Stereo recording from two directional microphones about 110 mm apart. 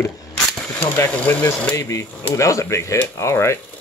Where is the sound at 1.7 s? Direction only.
25° left (ahead or behind).